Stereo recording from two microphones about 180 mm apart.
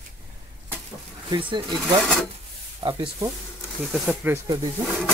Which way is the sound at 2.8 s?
25° right (ahead or behind).